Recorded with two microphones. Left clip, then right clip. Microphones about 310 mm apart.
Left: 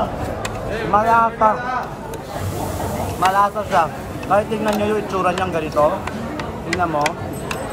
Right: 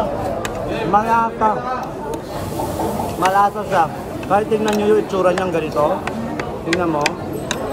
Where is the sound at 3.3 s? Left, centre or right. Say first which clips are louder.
Right 1 dB; centre.